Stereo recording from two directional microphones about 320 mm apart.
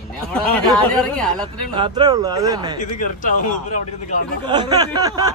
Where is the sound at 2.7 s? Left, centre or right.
Left.